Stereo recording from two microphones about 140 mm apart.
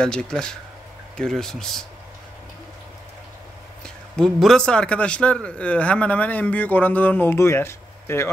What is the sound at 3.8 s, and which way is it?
A man's voice, 5° left (ahead or behind).